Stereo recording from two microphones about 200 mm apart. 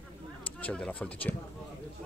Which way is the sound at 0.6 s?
5° left (ahead or behind).